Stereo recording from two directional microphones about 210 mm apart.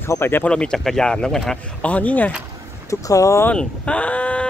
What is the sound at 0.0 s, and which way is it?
Speech, 10° left (ahead or behind).